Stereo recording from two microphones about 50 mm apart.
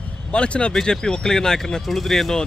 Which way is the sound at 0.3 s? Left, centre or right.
Left.